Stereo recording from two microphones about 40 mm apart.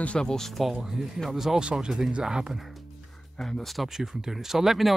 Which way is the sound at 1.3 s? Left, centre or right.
Centre.